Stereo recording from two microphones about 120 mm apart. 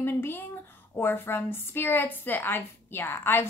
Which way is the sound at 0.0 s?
20° left (ahead or behind).